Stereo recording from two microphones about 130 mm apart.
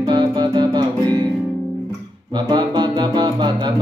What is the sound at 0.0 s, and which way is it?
Music, 35° right (ahead or behind).